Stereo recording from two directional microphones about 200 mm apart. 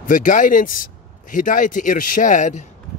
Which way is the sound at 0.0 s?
40° left (ahead or behind).